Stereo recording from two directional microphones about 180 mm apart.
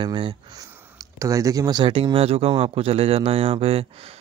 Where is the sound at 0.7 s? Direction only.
10° right (ahead or behind).